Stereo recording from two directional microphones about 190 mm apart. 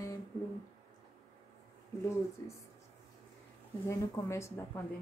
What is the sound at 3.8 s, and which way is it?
Speech, 15° left (ahead or behind).